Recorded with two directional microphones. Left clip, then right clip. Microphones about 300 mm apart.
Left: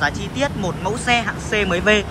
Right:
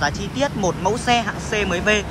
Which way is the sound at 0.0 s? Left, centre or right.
Centre.